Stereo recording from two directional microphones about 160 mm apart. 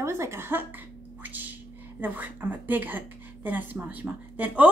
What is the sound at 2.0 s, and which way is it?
A woman's voice, 10° right (ahead or behind).